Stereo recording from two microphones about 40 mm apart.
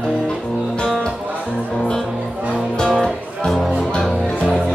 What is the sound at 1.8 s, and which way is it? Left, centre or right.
Speech, centre.